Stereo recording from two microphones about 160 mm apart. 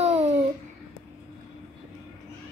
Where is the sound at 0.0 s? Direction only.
40° right (ahead or behind).